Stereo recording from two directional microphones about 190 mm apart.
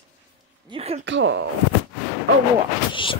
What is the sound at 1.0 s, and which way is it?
Speech, 75° right (ahead or behind).